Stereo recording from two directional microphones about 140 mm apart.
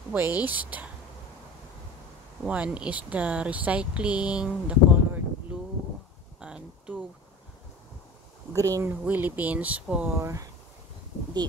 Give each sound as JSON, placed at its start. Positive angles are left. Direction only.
{"t": 0.1, "sound": "speech", "side_deg": -10}
{"t": 2.4, "sound": "speech", "side_deg": -10}
{"t": 8.5, "sound": "speech", "side_deg": -25}
{"t": 10.1, "sound": "speech", "side_deg": -20}